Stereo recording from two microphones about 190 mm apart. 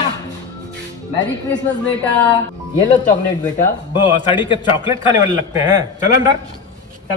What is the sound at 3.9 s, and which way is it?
Speech, 25° left (ahead or behind).